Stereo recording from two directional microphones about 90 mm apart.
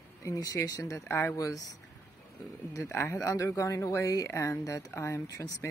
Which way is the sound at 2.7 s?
30° left (ahead or behind).